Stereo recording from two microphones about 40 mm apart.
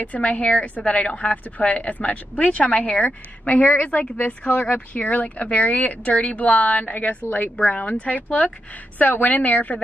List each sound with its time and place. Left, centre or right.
0.0 s a woman's voice: left
8.0 s a woman's voice: left